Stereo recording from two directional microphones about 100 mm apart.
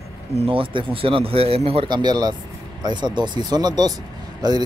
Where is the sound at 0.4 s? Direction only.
60° right (ahead or behind).